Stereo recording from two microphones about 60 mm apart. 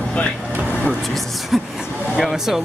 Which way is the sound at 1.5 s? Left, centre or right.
Centre.